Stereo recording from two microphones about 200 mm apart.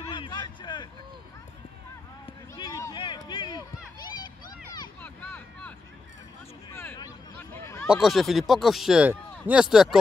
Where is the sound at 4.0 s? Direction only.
20° left (ahead or behind).